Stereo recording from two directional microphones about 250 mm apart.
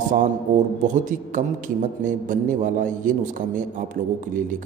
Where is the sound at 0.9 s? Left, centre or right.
Right.